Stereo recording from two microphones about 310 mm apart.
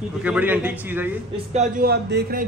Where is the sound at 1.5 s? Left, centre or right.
Right.